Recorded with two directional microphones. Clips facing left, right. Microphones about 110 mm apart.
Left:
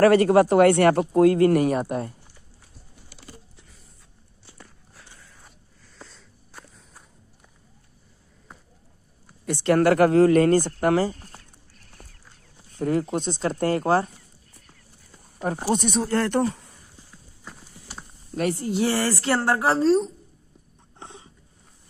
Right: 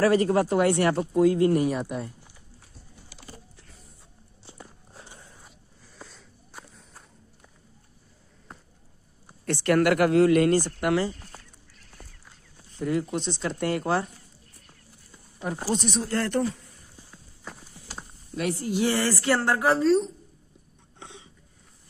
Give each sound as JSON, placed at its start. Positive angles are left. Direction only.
{"t": 0.0, "sound": "speech", "side_deg": 70}
{"t": 4.6, "sound": "walk", "side_deg": -20}
{"t": 5.9, "sound": "walk", "side_deg": -5}
{"t": 8.5, "sound": "a sound", "side_deg": 0}
{"t": 9.4, "sound": "speech", "side_deg": 15}
{"t": 9.8, "sound": "speech", "side_deg": 35}
{"t": 12.7, "sound": "speech", "side_deg": 45}
{"t": 15.7, "sound": "speech", "side_deg": 50}
{"t": 18.3, "sound": "a woman's voice", "side_deg": 45}
{"t": 18.6, "sound": "a woman's voice", "side_deg": 30}
{"t": 21.0, "sound": "a sound", "side_deg": 40}